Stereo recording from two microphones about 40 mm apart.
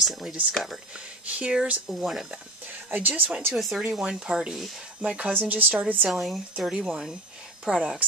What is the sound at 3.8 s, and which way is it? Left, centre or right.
Speech, centre.